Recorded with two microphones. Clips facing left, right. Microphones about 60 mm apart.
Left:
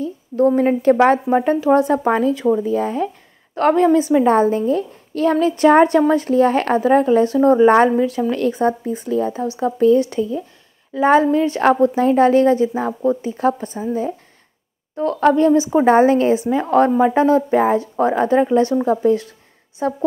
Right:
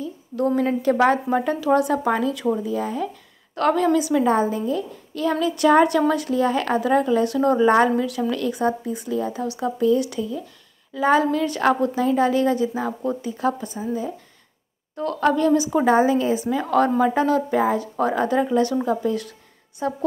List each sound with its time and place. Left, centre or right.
0.7 s a woman's voice: left
16.3 s a woman's voice: left